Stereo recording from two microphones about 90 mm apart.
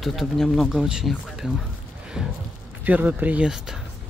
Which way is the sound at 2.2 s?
5° right (ahead or behind).